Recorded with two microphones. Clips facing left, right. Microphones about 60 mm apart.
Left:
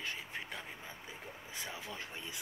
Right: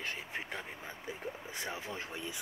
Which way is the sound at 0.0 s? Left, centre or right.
Right.